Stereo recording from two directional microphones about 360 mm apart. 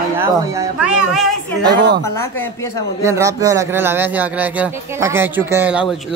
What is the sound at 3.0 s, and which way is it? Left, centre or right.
Speech, centre.